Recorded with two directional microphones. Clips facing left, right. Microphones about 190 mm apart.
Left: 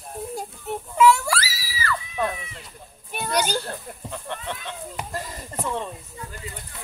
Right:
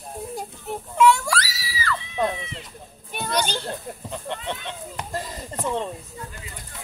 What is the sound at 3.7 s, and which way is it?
Speech, 20° right (ahead or behind).